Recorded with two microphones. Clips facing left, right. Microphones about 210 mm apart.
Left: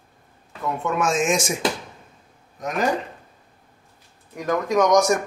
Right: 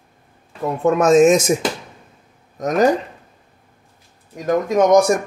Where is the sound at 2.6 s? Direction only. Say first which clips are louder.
Right 8 dB; 40° right (ahead or behind).